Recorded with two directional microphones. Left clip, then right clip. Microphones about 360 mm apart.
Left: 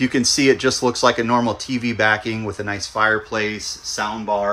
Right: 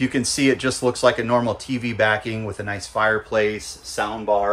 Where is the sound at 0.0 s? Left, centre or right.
Centre.